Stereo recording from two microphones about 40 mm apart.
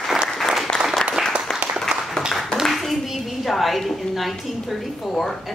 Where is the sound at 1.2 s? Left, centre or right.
Centre.